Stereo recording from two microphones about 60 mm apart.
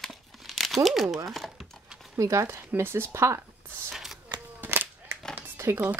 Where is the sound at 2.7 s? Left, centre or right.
Right.